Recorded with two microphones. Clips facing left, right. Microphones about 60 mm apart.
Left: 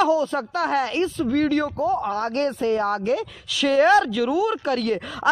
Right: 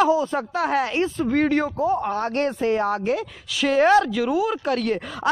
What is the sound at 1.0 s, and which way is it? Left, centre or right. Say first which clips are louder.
Speech: even; right.